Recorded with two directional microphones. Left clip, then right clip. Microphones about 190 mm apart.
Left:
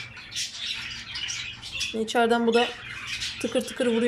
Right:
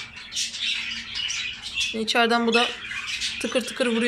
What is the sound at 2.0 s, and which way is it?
Speech, 5° left (ahead or behind).